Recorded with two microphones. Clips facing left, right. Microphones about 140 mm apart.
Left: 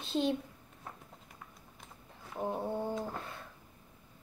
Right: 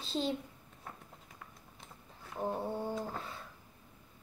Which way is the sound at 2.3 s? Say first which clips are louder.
Left 1 dB; 5° left (ahead or behind).